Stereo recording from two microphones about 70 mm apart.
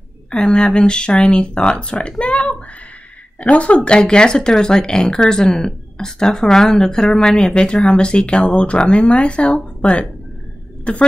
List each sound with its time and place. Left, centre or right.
0.3 s speech: centre